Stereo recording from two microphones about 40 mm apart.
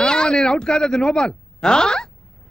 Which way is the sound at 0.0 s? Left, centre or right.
Left.